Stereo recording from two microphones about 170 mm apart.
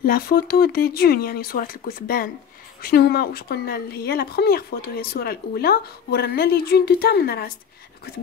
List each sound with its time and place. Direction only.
0.0 s speech: 60° left (ahead or behind)